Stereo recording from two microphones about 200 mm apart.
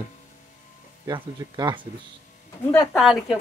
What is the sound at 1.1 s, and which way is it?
Speech, 20° right (ahead or behind).